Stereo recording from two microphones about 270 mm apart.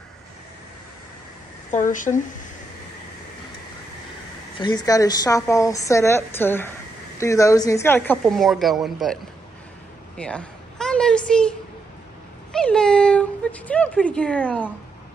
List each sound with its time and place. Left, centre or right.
1.7 s speech: left
4.6 s a woman's voice: centre
12.5 s speech: centre